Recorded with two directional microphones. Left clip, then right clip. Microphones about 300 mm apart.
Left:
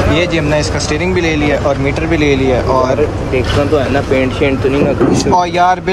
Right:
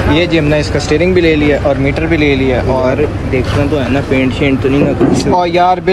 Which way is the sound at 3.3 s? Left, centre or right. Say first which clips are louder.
Left 1 dB; centre.